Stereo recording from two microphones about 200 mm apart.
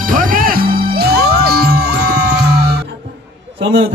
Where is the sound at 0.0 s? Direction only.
45° right (ahead or behind).